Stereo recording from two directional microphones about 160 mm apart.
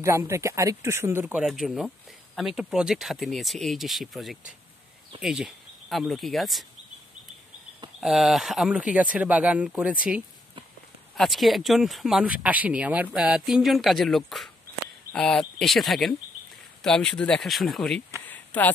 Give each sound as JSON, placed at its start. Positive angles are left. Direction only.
{"t": 0.0, "sound": "speech", "side_deg": -15}
{"t": 1.2, "sound": "speech", "side_deg": -5}
{"t": 8.0, "sound": "speech", "side_deg": 0}
{"t": 18.2, "sound": "a sound", "side_deg": 10}